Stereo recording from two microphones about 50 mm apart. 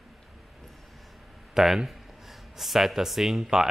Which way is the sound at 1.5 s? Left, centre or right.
Centre.